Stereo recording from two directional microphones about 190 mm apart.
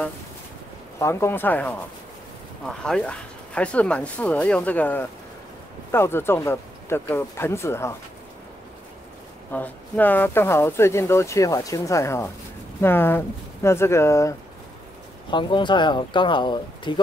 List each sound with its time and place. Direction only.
0.9 s speech: 15° left (ahead or behind)
9.5 s speech: 10° left (ahead or behind)
15.3 s speech: 25° left (ahead or behind)